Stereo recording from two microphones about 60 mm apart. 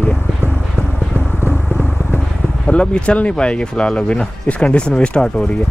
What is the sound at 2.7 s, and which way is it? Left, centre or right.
Speech, centre.